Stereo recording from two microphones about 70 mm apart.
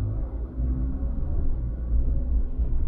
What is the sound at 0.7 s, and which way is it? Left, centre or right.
Rumble, left.